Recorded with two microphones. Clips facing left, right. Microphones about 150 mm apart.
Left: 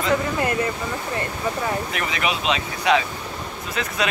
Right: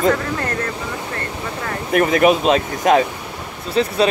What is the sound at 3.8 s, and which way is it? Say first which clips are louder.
Speech: right 11 dB; 30° right (ahead or behind).